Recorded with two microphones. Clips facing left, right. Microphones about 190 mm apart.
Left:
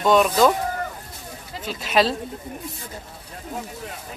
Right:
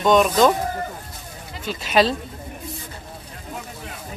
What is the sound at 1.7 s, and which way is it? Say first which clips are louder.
Speech: right 2 dB; centre (ahead or behind).